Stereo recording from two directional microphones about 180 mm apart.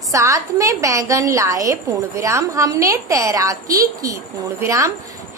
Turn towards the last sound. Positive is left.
turn(degrees=-15)  # may be behind; listen again after turning